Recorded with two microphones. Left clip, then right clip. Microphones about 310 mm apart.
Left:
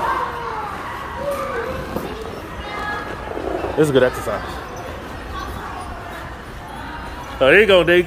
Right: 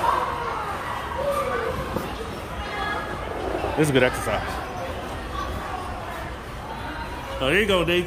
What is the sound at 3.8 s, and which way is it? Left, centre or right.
Speech, centre.